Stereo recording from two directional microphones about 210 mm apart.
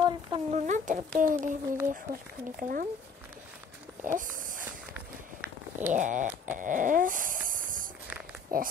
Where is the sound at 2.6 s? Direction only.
40° right (ahead or behind).